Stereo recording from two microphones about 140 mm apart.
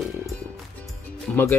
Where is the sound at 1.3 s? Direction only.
15° left (ahead or behind).